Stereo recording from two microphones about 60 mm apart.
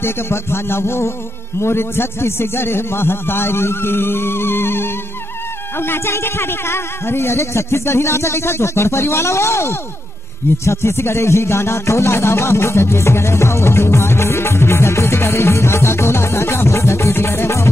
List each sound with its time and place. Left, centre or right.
0.0 s music: left
1.6 s a man's voice: left
5.8 s music: left